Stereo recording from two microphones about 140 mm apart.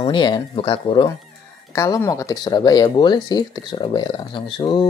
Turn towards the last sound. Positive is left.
turn(degrees=35)  # may be behind; listen again after turning